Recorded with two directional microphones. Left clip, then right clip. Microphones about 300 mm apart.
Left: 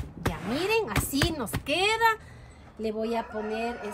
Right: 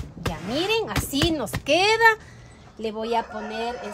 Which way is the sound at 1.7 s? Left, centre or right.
Right.